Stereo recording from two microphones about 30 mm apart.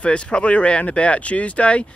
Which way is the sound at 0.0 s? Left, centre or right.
Left.